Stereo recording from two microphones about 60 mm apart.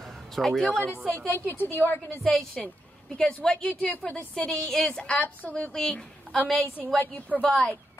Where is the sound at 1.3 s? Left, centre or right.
Left.